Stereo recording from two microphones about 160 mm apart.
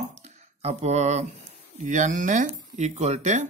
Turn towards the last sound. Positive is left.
turn(degrees=-45)  # may be behind; listen again after turning